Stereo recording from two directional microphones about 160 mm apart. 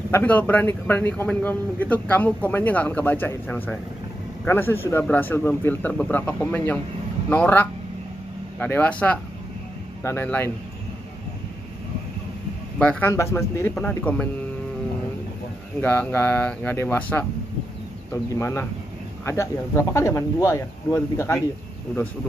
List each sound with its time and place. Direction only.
0.1 s a man's voice: 10° left (ahead or behind)
12.7 s a man's voice: 10° left (ahead or behind)
15.8 s a man's voice: 10° left (ahead or behind)